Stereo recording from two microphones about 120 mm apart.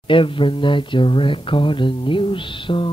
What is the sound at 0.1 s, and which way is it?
Music, 45° left (ahead or behind).